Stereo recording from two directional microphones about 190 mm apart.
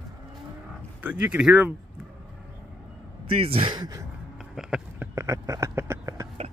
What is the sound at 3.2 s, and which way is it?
Speech, 30° right (ahead or behind).